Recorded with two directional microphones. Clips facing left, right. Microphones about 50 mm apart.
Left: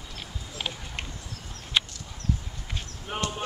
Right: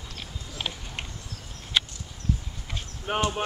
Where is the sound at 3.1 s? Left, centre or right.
Right.